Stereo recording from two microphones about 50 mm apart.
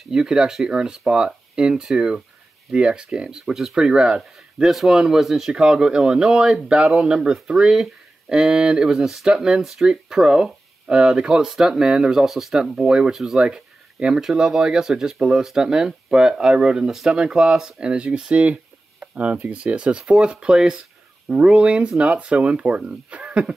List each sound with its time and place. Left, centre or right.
0.1 s speech: centre